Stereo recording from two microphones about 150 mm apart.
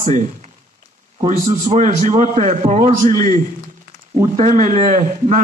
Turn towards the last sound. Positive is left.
turn(degrees=-55)  # may be behind; listen again after turning